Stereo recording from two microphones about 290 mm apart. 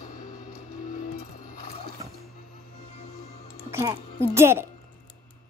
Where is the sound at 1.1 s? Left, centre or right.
Left.